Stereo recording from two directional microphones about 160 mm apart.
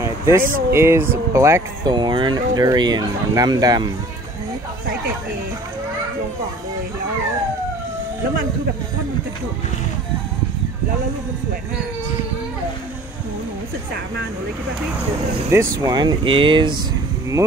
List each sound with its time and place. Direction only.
0.4 s speech: 60° right (ahead or behind)
0.7 s speech: 15° right (ahead or behind)
15.5 s speech: 20° right (ahead or behind)